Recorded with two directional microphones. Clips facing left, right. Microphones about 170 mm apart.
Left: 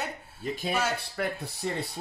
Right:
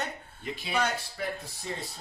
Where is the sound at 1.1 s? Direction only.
60° left (ahead or behind).